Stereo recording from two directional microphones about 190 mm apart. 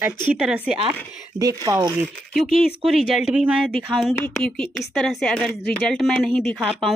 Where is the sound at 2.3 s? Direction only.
Centre (ahead or behind).